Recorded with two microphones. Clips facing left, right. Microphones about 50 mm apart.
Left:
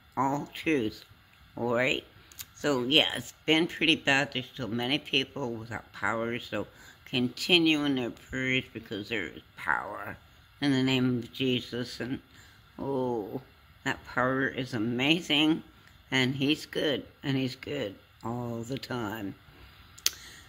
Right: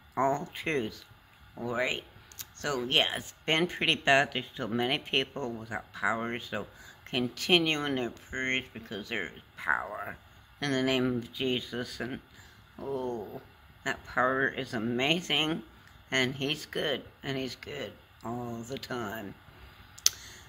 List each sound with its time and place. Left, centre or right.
0.1 s speech: centre
1.5 s a sound: centre
2.8 s speech: centre
12.7 s speech: centre
20.0 s clicking: centre